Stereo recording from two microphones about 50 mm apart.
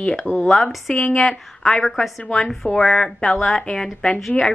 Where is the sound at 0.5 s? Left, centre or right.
Centre.